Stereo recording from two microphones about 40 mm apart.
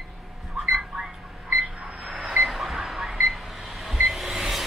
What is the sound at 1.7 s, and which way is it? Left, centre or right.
Alarm clock, right.